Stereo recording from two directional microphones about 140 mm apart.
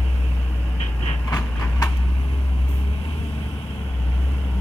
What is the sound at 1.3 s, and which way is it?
Vehicle, 25° left (ahead or behind).